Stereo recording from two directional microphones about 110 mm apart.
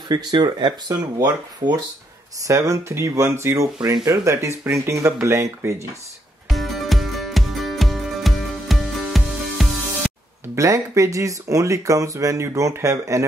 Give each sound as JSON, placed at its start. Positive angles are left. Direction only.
{"t": 0.1, "sound": "speech", "side_deg": -40}
{"t": 6.5, "sound": "music", "side_deg": 0}
{"t": 10.5, "sound": "speech", "side_deg": -30}